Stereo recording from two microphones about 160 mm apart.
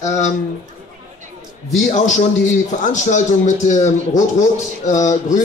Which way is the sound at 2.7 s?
50° left (ahead or behind).